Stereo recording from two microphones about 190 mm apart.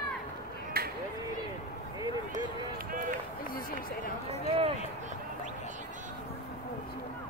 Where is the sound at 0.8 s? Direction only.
50° right (ahead or behind).